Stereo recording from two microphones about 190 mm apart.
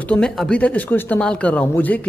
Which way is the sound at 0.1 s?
5° left (ahead or behind).